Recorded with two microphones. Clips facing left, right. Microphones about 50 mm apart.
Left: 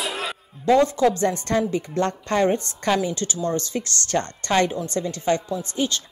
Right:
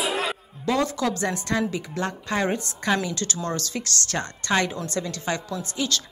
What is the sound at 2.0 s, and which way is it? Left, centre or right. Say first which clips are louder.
Speech: left 5 dB; centre.